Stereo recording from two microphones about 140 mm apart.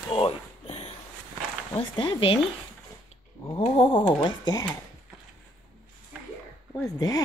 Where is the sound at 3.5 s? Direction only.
40° left (ahead or behind).